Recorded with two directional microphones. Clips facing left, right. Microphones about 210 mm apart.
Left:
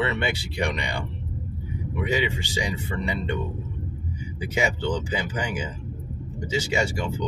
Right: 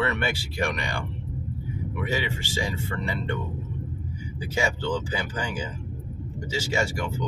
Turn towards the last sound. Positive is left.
turn(degrees=20)  # may be behind; listen again after turning